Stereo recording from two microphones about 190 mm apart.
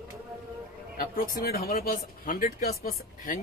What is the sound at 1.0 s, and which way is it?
Speech, 50° left (ahead or behind).